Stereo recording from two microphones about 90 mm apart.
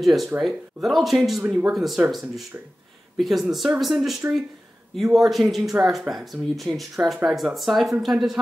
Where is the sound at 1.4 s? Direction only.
15° right (ahead or behind).